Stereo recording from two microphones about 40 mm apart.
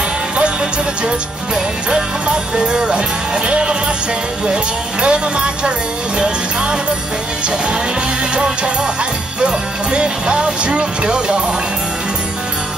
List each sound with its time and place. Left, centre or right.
1.5 s music: centre
2.2 s speech: right
5.0 s speech: right
9.4 s speech: right